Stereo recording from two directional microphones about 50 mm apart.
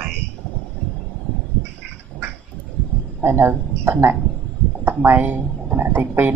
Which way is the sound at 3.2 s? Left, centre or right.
Right.